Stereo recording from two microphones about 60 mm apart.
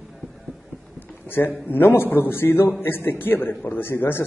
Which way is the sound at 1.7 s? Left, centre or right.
Left.